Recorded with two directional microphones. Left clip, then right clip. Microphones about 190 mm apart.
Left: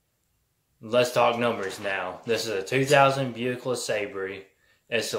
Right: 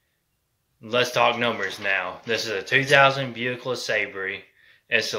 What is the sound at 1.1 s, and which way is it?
Speech, 5° left (ahead or behind).